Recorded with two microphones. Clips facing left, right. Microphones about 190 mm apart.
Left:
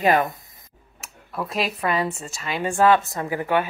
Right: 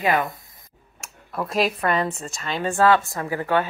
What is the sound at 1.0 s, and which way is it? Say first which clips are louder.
Speech: right 1 dB; centre (ahead or behind).